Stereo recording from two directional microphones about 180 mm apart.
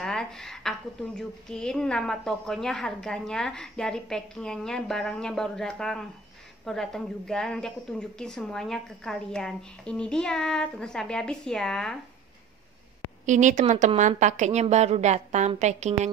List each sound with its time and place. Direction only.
0.0 s a woman's voice: 5° left (ahead or behind)
13.2 s a woman's voice: 45° right (ahead or behind)